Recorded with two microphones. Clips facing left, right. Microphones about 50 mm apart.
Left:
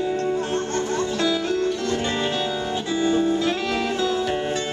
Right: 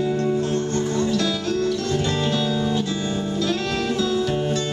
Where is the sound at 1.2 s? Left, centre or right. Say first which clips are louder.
Left 1 dB; left.